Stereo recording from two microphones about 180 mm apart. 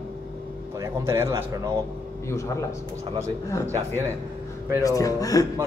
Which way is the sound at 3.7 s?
15° right (ahead or behind).